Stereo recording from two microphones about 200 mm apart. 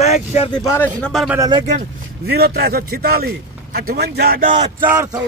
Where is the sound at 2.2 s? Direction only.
50° right (ahead or behind).